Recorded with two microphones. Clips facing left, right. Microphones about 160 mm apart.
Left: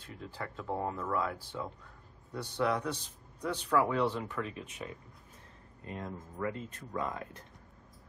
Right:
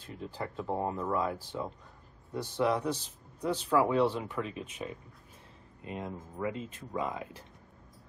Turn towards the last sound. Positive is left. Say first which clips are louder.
# right 2 dB
turn(degrees=-20)  # may be behind; listen again after turning